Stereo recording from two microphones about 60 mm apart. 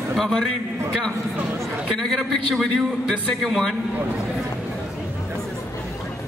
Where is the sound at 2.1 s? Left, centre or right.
Centre.